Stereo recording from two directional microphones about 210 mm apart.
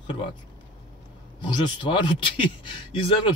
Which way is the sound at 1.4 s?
20° left (ahead or behind).